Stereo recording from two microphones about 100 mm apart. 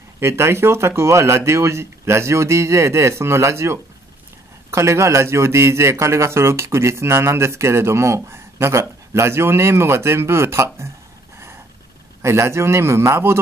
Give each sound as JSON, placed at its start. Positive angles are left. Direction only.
{"t": 0.2, "sound": "a man's voice", "side_deg": -25}
{"t": 12.2, "sound": "a man's voice", "side_deg": -30}